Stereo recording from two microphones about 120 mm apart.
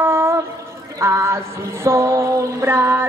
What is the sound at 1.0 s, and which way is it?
Music, 25° right (ahead or behind).